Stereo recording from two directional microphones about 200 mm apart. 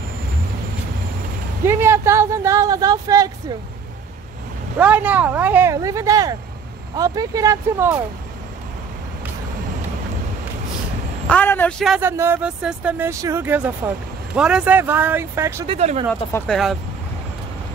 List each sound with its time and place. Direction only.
1.7 s speech: 10° right (ahead or behind)
4.7 s speech: 5° right (ahead or behind)
11.2 s speech: 10° left (ahead or behind)
12.0 s speech: 10° right (ahead or behind)
15.6 s speech: 30° right (ahead or behind)
16.1 s speech: 10° left (ahead or behind)